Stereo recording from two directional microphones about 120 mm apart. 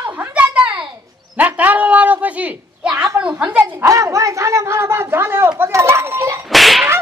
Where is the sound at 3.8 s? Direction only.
25° right (ahead or behind).